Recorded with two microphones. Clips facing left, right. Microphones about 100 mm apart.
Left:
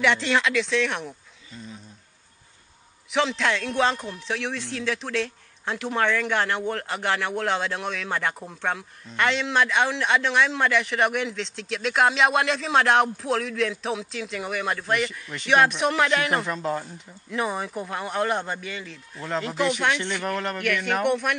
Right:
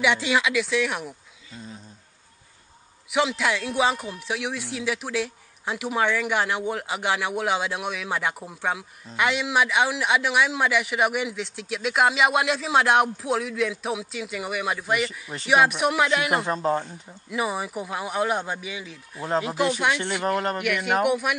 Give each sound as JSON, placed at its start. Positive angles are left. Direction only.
{"t": 0.0, "sound": "a man's voice", "side_deg": -10}
{"t": 3.1, "sound": "a man's voice", "side_deg": -5}
{"t": 16.4, "sound": "speech", "side_deg": -35}
{"t": 17.3, "sound": "a man's voice", "side_deg": -5}